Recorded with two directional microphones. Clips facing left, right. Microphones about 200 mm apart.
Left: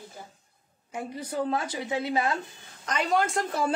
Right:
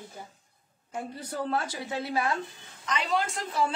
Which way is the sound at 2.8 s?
45° left (ahead or behind).